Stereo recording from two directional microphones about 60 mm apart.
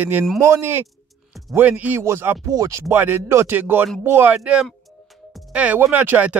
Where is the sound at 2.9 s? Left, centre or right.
Right.